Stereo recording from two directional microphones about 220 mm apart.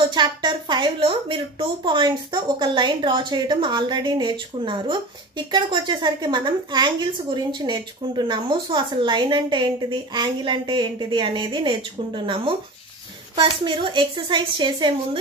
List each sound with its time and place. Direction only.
0.1 s a woman's voice: 20° right (ahead or behind)
13.4 s a woman's voice: 20° right (ahead or behind)